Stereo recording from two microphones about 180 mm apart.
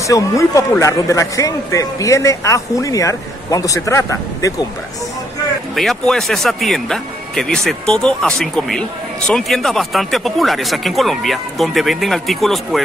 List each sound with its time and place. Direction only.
0.0 s a man's voice: 20° left (ahead or behind)
5.8 s speech: centre (ahead or behind)